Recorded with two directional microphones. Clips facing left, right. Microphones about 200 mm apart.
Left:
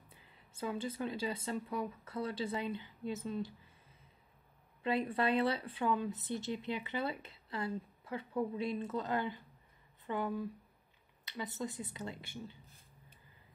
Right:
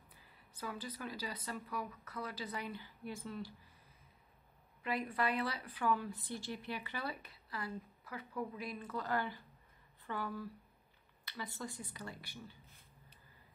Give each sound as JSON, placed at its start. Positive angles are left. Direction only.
{"t": 0.1, "sound": "speech", "side_deg": 25}
{"t": 4.8, "sound": "speech", "side_deg": 30}